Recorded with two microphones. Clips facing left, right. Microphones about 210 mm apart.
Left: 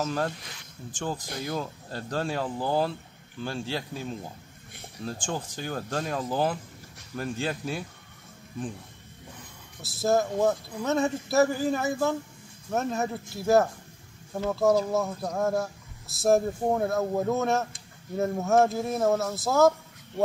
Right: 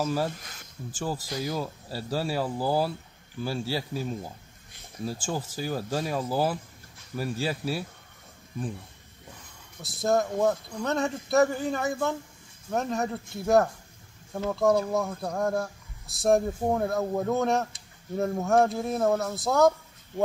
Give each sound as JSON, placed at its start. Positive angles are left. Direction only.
{"t": 0.0, "sound": "speech", "side_deg": -5}
{"t": 0.4, "sound": "speech", "side_deg": -45}
{"t": 0.9, "sound": "speech", "side_deg": -5}
{"t": 9.8, "sound": "speech", "side_deg": 5}